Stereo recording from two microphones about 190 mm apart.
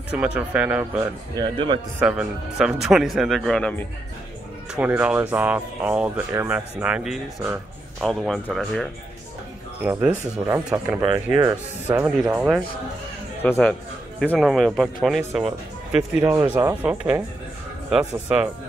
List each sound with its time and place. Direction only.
0.1 s speech: 5° right (ahead or behind)
1.4 s speech: 25° right (ahead or behind)
2.0 s speech: 5° right (ahead or behind)
4.7 s speech: 10° right (ahead or behind)
9.8 s speech: 10° right (ahead or behind)
12.2 s speech: 5° right (ahead or behind)
13.4 s speech: 10° left (ahead or behind)
16.0 s speech: 15° right (ahead or behind)